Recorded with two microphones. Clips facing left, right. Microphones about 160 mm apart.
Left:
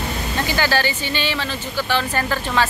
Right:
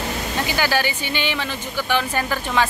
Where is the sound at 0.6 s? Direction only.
15° right (ahead or behind).